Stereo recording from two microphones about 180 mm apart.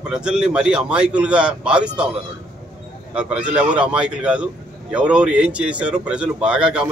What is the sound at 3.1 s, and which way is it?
A man's voice, 5° right (ahead or behind).